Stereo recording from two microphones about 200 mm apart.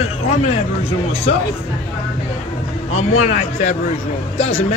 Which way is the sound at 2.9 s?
35° left (ahead or behind).